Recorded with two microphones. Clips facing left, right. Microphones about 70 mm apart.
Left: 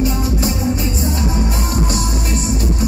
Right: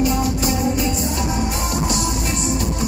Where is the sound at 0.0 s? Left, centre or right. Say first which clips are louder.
Even; left.